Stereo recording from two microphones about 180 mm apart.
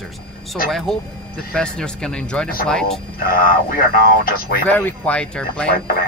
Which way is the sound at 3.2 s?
55° left (ahead or behind).